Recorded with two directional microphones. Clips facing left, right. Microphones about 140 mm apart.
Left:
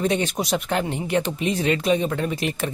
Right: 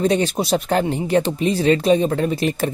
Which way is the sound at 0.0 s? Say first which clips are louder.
Right 4 dB; 35° right (ahead or behind).